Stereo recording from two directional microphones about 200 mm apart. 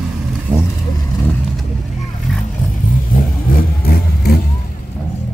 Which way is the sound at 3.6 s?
50° left (ahead or behind).